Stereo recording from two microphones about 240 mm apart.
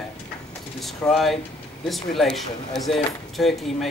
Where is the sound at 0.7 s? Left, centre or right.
Centre.